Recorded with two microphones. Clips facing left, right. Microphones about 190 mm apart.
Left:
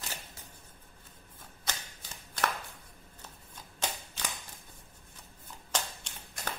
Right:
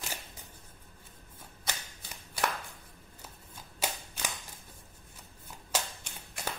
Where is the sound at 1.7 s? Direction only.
10° right (ahead or behind).